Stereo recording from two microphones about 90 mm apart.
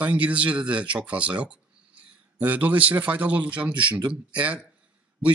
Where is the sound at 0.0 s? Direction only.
15° right (ahead or behind).